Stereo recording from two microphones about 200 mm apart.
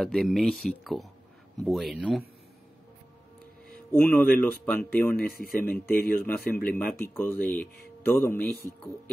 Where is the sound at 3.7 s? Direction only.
10° left (ahead or behind).